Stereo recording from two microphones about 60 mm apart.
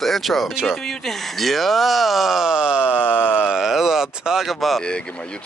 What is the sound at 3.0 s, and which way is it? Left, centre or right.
Speech, left.